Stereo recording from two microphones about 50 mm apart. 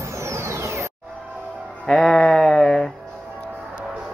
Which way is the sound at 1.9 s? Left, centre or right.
Centre.